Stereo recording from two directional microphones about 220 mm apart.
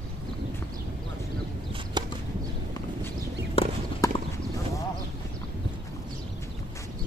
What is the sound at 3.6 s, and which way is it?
Clip-clop, 25° left (ahead or behind).